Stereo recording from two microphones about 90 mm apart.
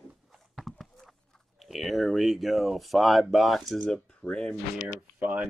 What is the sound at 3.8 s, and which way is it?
Speech, 10° left (ahead or behind).